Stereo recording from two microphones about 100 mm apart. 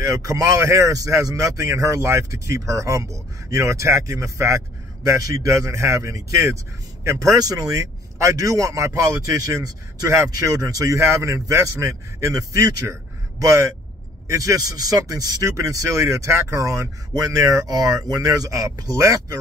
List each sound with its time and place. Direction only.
0.0 s speech: 35° right (ahead or behind)